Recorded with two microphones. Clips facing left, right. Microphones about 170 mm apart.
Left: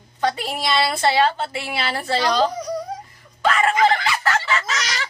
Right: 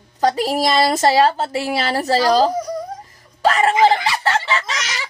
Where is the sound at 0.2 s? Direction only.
40° right (ahead or behind).